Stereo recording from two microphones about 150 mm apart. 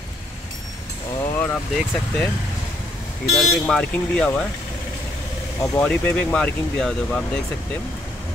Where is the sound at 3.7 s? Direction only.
5° left (ahead or behind).